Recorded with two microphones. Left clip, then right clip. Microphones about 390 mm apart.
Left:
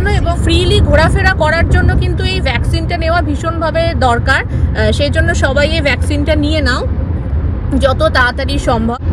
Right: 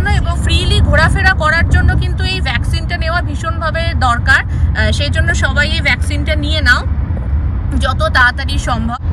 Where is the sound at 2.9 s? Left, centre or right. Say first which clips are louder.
Left 4 dB; centre.